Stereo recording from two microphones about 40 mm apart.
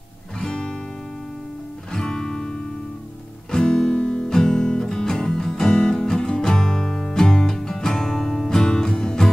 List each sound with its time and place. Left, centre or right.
2.0 s music: centre
3.5 s music: centre